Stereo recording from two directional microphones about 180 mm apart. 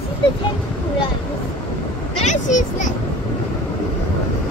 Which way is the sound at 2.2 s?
45° left (ahead or behind).